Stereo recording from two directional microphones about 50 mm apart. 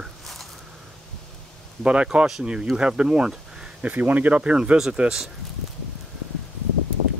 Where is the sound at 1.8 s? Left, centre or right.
Right.